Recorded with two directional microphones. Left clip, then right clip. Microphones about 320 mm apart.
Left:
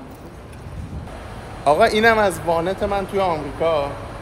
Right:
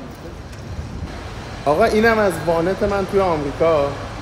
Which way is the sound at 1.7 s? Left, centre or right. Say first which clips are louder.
Left 1 dB; centre.